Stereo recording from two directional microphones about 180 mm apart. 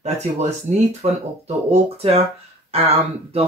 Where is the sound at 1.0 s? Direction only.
35° right (ahead or behind).